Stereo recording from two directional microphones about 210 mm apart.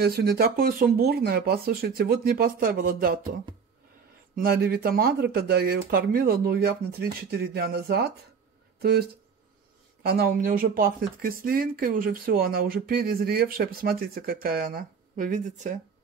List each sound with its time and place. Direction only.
0.0 s speech: 50° right (ahead or behind)
4.4 s speech: 45° right (ahead or behind)
10.0 s speech: 45° right (ahead or behind)